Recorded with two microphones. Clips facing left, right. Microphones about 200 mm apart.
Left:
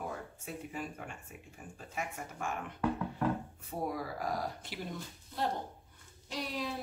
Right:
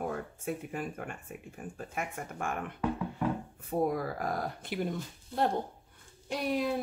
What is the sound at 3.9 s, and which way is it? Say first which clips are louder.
Speech: right 4 dB; 55° right (ahead or behind).